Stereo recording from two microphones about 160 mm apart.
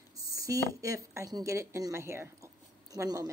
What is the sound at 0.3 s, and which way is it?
Speech, 20° right (ahead or behind).